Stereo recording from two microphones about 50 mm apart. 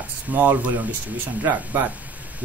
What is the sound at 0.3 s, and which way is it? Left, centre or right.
Speech, right.